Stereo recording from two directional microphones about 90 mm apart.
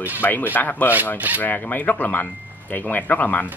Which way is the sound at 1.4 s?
20° left (ahead or behind).